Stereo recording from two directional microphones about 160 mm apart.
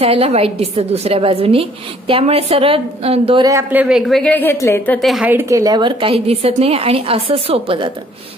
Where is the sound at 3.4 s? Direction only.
15° right (ahead or behind).